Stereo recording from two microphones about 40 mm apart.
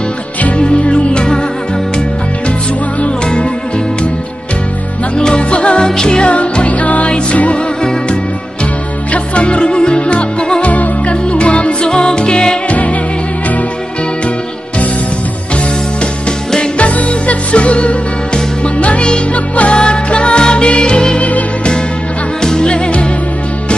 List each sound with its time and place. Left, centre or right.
0.6 s music: left
5.1 s music: left
9.1 s music: left
12.6 s music: left
16.7 s music: left
21.2 s music: left
22.4 s music: centre